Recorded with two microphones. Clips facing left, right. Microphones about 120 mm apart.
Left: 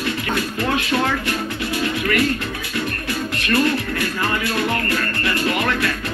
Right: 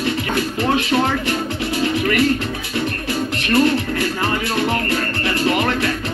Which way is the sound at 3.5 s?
25° right (ahead or behind).